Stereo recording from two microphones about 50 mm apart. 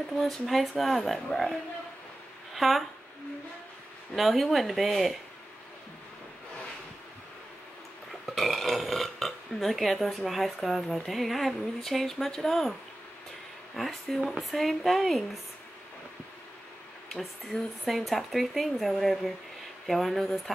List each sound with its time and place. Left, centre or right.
0.2 s speech: centre
4.1 s speech: centre
8.1 s speech: centre
13.7 s speech: centre
17.1 s speech: centre